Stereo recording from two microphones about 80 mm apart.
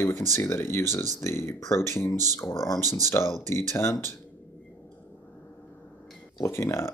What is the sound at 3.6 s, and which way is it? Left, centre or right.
Speech, left.